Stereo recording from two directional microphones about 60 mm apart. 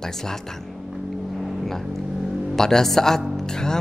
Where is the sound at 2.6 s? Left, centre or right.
Centre.